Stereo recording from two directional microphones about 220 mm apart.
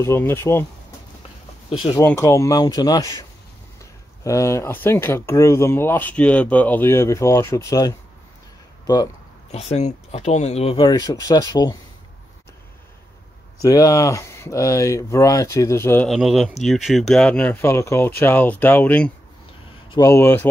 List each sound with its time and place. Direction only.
0.0 s speech: 10° left (ahead or behind)
1.7 s speech: 20° left (ahead or behind)
9.5 s speech: 30° left (ahead or behind)
13.6 s speech: 15° left (ahead or behind)
16.1 s speech: centre (ahead or behind)